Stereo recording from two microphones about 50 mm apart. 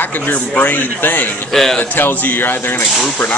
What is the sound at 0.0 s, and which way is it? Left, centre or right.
Speech, left.